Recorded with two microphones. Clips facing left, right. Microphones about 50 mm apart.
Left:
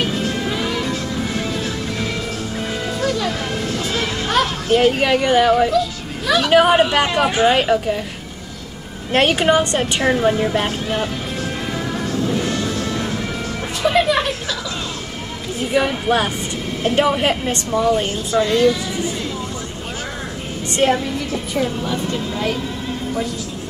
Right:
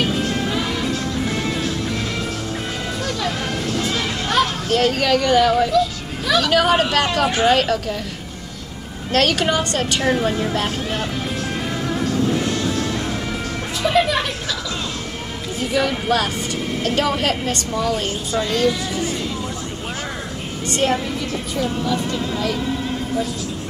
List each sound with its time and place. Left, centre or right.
4.3 s a child's voice: centre
5.8 s children playing: centre
6.5 s a woman's voice: centre
9.1 s a woman's voice: left
13.8 s a sound: centre
15.7 s a woman's voice: left
20.6 s music: left